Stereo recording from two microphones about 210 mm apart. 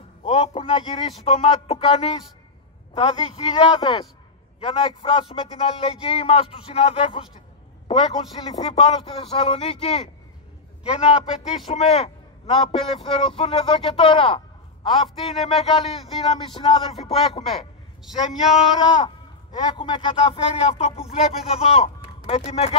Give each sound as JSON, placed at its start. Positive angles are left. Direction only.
{"t": 0.2, "sound": "a man's voice", "side_deg": 30}
{"t": 17.5, "sound": "a man's voice", "side_deg": 0}
{"t": 19.7, "sound": "speech", "side_deg": 20}